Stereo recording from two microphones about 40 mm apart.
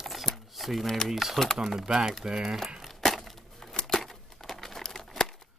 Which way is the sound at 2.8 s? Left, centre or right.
Centre.